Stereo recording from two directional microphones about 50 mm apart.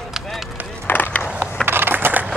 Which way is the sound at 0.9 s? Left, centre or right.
Left.